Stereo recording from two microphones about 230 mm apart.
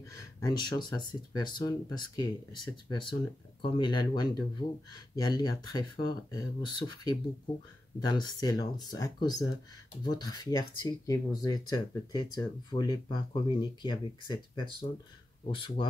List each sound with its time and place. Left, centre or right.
0.0 s speech: centre